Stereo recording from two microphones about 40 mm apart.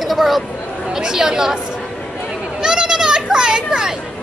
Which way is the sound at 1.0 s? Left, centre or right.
Centre.